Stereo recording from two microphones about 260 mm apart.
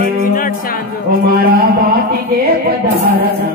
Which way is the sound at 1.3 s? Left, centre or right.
Right.